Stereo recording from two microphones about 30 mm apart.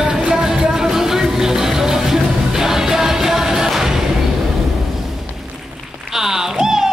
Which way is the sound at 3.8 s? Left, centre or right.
Centre.